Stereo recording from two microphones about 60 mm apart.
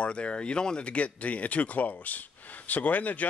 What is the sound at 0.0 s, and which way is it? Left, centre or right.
Speech, centre.